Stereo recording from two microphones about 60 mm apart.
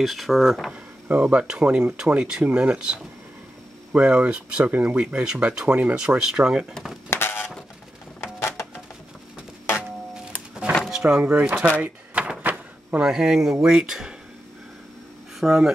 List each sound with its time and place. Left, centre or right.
0.0 s speech: centre
1.0 s speech: right
7.1 s a sound: left
10.9 s speech: centre
11.8 s a sound: right
13.0 s speech: centre
15.4 s speech: centre